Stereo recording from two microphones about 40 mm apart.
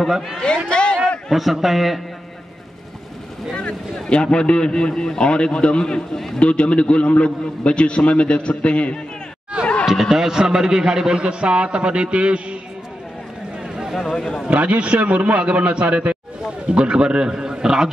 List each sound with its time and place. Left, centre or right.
0.0 s a man's voice: centre
0.7 s a sound: left
1.3 s a man's voice: centre
3.5 s a man's voice: left
9.8 s speech: centre
10.2 s a man's voice: centre
14.1 s a man's voice: centre
14.5 s a man's voice: right; by 17.8 s centre